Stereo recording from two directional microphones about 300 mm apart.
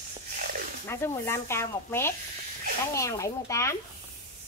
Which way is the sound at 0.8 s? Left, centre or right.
Centre.